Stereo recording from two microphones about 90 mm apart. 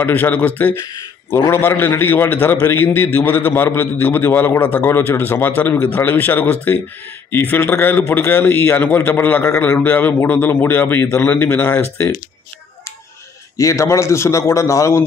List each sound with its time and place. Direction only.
0.0 s a man's voice: 20° left (ahead or behind)
13.6 s a man's voice: 35° left (ahead or behind)